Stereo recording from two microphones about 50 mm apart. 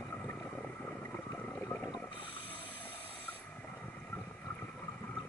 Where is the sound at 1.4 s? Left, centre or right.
Left.